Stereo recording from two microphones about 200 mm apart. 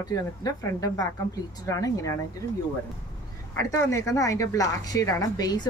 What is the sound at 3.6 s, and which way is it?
Speech, 15° left (ahead or behind).